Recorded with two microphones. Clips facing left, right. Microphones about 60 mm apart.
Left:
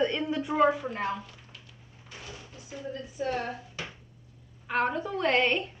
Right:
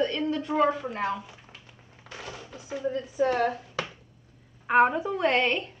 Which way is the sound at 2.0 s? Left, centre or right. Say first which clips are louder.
Right 5 dB; right.